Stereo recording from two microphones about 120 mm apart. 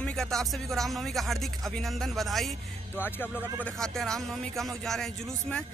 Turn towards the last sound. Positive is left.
turn(degrees=5)  # may be behind; listen again after turning